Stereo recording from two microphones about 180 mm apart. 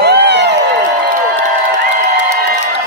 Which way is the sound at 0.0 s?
65° right (ahead or behind).